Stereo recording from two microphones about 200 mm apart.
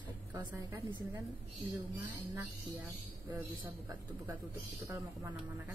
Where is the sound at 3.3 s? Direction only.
20° right (ahead or behind).